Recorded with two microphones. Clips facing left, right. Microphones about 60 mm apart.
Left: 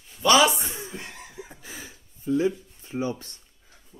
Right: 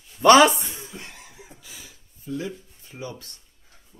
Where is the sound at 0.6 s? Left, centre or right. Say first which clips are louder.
Left 2 dB; left.